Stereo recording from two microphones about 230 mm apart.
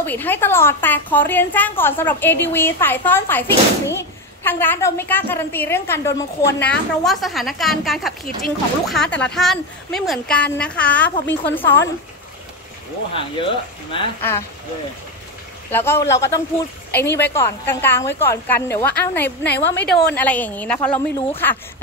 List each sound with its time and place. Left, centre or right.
0.0 s a woman's voice: centre
13.1 s speech: left
15.7 s a woman's voice: centre
19.4 s a woman's voice: left
20.2 s a woman's voice: centre